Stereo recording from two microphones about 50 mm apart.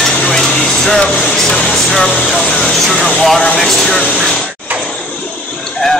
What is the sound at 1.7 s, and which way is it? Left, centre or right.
Speech, centre.